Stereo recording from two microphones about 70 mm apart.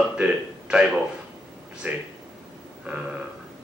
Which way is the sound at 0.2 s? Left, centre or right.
Centre.